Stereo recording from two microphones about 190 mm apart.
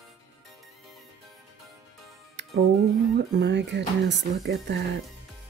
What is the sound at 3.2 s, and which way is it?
Speech, 65° right (ahead or behind).